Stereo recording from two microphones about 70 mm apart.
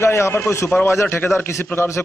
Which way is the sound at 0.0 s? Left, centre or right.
Left.